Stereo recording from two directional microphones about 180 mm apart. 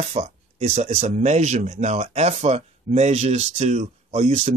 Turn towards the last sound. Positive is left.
turn(degrees=-35)  # may be behind; listen again after turning